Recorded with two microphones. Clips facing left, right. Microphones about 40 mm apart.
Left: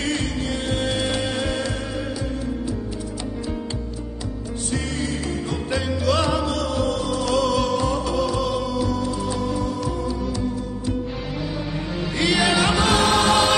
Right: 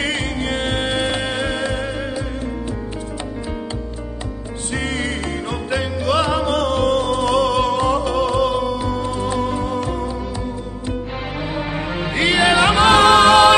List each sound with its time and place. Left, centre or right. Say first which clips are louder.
0.0 s music: right 3 dB; right
4.7 s music: right 4 dB; right
5.7 s music: right 2 dB; right
6.4 s music: right 5 dB; right
11.5 s music: right 4 dB; right